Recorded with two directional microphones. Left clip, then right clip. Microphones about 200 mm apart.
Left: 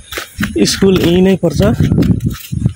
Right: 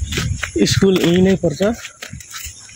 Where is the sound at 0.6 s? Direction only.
20° left (ahead or behind).